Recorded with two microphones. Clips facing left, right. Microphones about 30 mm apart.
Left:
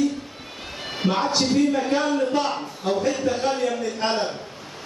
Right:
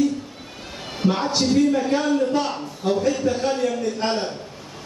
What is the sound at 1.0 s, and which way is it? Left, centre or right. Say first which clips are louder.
A man's voice: right 1 dB; centre.